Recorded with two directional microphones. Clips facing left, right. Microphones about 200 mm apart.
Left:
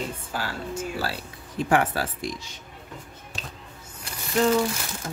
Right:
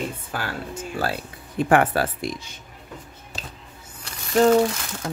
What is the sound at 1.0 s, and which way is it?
Speech, 55° right (ahead or behind).